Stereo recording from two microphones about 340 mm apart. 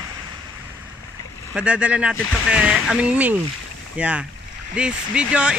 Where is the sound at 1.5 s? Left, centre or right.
Centre.